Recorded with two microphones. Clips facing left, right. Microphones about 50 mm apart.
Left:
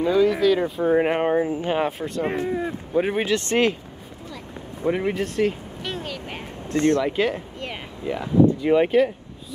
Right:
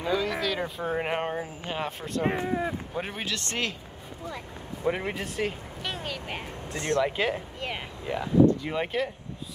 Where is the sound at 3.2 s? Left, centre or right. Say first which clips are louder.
Left 11 dB; left.